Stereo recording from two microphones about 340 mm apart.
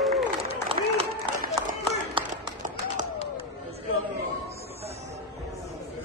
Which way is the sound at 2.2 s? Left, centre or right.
Right.